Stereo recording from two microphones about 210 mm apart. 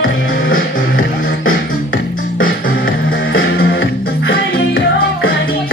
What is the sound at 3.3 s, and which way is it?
Music, 55° left (ahead or behind).